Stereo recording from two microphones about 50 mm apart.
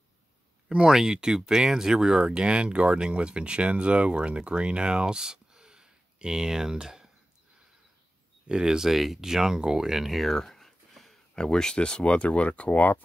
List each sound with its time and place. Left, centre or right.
0.7 s speech: centre
8.5 s speech: centre
10.3 s a sound: centre
11.3 s speech: centre